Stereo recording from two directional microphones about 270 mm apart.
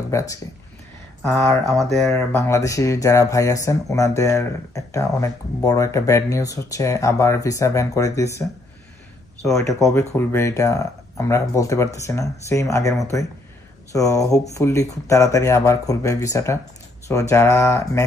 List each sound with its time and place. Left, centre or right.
0.1 s speech: centre
2.0 s speech: centre